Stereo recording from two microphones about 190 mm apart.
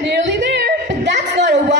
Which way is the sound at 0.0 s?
65° right (ahead or behind).